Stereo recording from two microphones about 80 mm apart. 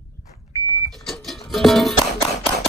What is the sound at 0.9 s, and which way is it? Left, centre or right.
Music, centre.